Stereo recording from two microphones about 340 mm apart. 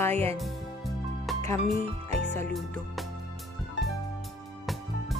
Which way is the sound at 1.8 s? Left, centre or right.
Left.